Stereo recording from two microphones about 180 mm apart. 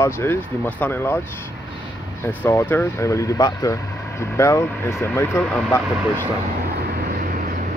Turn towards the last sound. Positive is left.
turn(degrees=10)  # may be behind; listen again after turning